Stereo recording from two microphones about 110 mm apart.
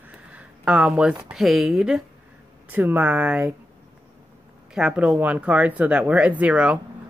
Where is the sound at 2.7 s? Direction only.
15° right (ahead or behind).